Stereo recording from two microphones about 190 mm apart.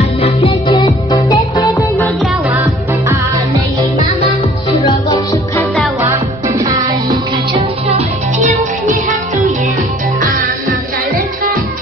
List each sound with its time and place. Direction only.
0.2 s music: 30° left (ahead or behind)
4.6 s music: 25° left (ahead or behind)
7.5 s music: 35° right (ahead or behind)